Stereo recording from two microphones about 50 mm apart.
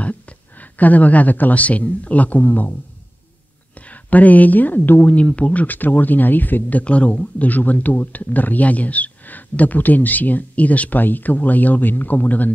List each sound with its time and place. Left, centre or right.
0.0 s speech: left
3.7 s speech: left
6.8 s speech: left